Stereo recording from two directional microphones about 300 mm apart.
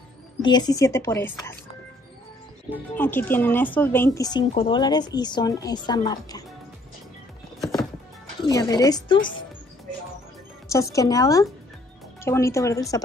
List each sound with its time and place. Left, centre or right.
0.4 s a woman's voice: centre
3.0 s a woman's voice: centre
8.5 s a woman's voice: centre
10.7 s a woman's voice: centre